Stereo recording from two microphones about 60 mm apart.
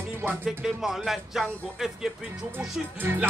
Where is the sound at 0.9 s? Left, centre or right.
Centre.